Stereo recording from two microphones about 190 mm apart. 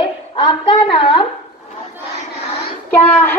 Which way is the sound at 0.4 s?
25° left (ahead or behind).